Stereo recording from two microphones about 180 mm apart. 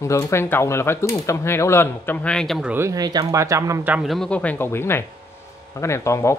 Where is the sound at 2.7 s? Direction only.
15° right (ahead or behind).